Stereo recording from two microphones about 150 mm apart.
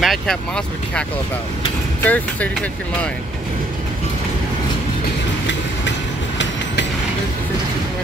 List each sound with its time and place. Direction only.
0.0 s speech: centre (ahead or behind)